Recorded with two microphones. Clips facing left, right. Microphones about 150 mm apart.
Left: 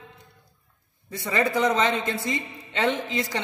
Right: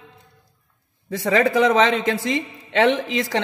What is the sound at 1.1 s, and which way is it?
A man's voice, 90° right.